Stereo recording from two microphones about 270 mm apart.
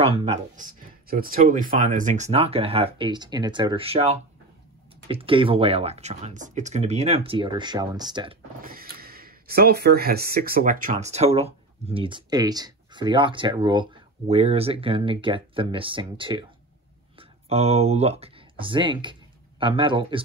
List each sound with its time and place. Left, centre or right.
0.0 s speech: right
8.6 s speech: right